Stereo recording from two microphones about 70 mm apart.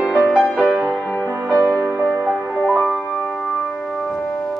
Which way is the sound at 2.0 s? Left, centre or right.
Centre.